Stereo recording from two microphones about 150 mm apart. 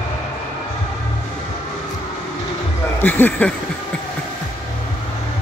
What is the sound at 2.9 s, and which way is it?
Speech, 15° left (ahead or behind).